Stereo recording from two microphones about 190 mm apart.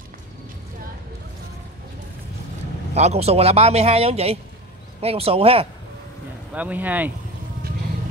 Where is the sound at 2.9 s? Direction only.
35° right (ahead or behind).